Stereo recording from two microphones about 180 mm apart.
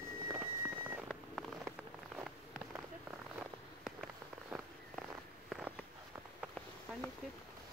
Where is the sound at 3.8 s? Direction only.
5° right (ahead or behind).